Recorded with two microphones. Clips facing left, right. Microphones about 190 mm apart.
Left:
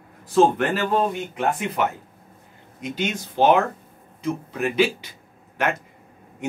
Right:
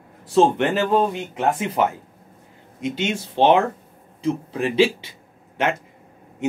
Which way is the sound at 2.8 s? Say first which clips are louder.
Right 3 dB; 25° right (ahead or behind).